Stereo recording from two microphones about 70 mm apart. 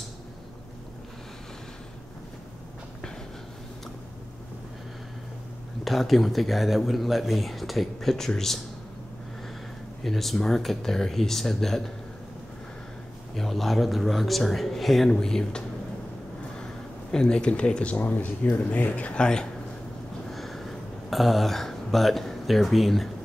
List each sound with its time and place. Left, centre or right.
5.9 s speech: centre
10.0 s speech: centre
13.4 s speech: centre
17.1 s speech: centre
20.2 s a sound: centre